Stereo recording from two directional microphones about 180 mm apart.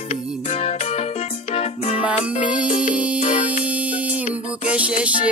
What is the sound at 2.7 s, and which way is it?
Music, 45° left (ahead or behind).